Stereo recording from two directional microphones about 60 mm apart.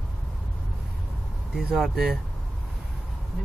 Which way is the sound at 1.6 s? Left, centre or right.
Centre.